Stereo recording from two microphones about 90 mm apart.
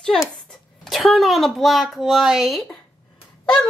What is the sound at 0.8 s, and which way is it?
A child's voice, centre (ahead or behind).